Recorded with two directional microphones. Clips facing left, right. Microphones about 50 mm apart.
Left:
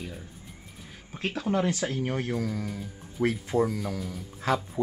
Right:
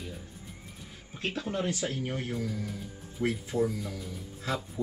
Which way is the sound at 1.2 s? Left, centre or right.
Left.